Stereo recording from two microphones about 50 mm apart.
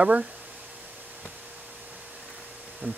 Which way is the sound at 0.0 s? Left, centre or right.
Right.